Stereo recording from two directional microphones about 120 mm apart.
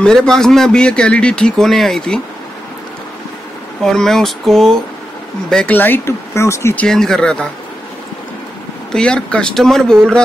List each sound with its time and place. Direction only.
0.0 s speech: 5° left (ahead or behind)
3.8 s speech: 5° left (ahead or behind); by 6.7 s 25° left (ahead or behind)
6.7 s speech: 10° left (ahead or behind)
8.9 s speech: 10° left (ahead or behind)